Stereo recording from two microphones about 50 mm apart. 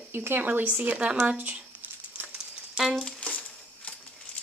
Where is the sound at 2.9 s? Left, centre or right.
Left.